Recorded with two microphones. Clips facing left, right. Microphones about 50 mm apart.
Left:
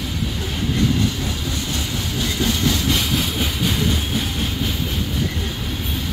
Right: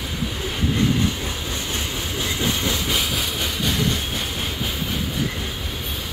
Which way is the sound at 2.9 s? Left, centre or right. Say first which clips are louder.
Left 3 dB; centre.